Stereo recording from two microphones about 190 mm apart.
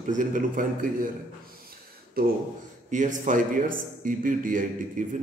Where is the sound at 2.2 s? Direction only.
50° right (ahead or behind).